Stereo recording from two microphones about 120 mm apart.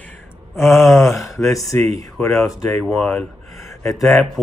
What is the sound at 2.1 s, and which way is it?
Speech, 5° left (ahead or behind).